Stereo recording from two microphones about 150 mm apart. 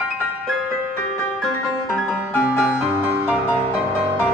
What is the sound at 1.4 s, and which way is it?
Music, centre (ahead or behind).